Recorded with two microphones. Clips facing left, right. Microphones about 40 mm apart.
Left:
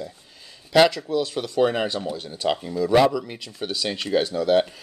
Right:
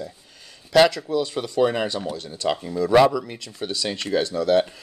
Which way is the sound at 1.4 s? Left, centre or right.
Centre.